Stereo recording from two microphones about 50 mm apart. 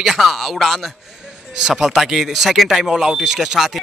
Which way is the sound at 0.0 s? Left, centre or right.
Centre.